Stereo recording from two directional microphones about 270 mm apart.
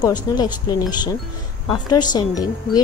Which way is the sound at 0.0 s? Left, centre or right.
Centre.